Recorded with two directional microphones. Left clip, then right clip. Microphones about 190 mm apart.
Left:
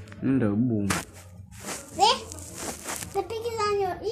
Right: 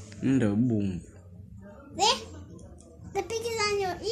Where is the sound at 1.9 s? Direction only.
25° right (ahead or behind).